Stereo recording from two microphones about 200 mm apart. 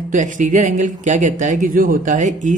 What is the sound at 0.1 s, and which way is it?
A man's voice, 40° right (ahead or behind).